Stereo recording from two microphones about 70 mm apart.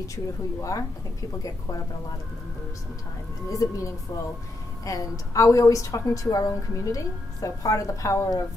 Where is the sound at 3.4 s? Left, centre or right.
Left.